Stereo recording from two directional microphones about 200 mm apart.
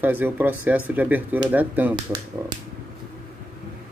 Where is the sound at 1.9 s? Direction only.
20° right (ahead or behind).